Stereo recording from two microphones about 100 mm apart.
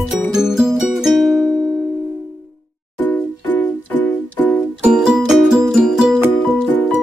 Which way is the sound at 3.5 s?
20° left (ahead or behind).